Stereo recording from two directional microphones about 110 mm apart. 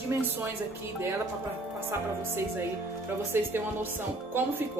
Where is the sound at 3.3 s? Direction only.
20° right (ahead or behind).